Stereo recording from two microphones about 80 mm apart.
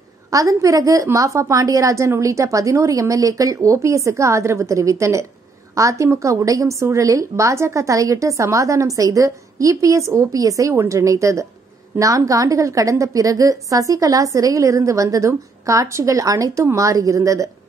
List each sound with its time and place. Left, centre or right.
0.3 s a woman's voice: right
11.9 s a woman's voice: right
12.3 s a woman's voice: right